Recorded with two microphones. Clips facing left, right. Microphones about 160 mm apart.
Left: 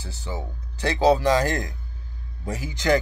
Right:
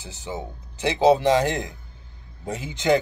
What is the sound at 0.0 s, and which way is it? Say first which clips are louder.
Speech: right 1 dB; 20° right (ahead or behind).